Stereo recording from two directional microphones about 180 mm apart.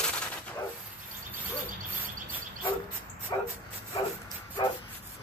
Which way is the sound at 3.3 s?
25° left (ahead or behind).